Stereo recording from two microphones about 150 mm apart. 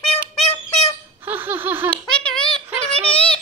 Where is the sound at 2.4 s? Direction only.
35° left (ahead or behind).